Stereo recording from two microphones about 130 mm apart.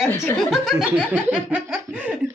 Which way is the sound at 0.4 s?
Centre (ahead or behind).